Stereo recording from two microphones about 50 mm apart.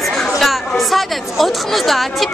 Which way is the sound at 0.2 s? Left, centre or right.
Centre.